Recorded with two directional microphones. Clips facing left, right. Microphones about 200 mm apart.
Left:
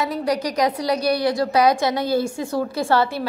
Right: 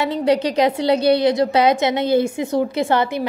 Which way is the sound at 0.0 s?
25° right (ahead or behind).